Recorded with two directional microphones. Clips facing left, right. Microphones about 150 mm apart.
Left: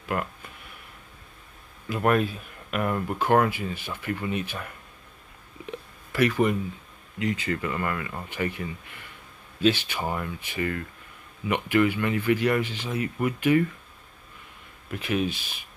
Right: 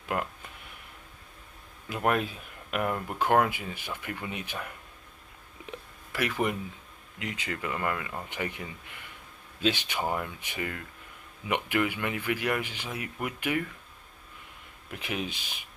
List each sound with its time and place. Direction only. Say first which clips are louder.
0.1 s speech: left 2 dB; 15° right (ahead or behind)
1.9 s speech: left 4 dB; 15° right (ahead or behind)
6.1 s speech: left 7 dB; 10° right (ahead or behind)
14.9 s speech: left 7 dB; 15° right (ahead or behind)